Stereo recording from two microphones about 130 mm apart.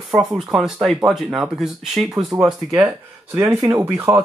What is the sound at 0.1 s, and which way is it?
Speech, centre (ahead or behind).